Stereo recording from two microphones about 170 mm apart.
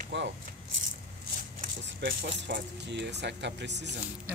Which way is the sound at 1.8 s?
75° right (ahead or behind).